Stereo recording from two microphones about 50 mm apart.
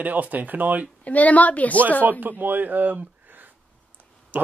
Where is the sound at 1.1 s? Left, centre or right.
Left.